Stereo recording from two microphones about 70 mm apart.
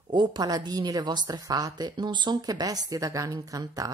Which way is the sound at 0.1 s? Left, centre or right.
Right.